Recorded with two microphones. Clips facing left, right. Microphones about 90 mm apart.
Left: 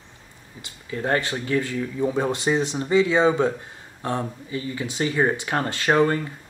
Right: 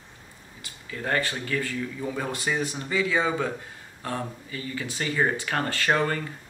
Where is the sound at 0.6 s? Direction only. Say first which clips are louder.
Left 7 dB; 25° left (ahead or behind).